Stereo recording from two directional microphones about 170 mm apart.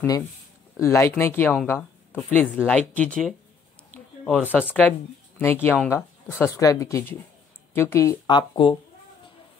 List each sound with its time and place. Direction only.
0.7 s speech: 15° left (ahead or behind)
4.5 s speech: 10° left (ahead or behind); by 8.7 s 30° left (ahead or behind)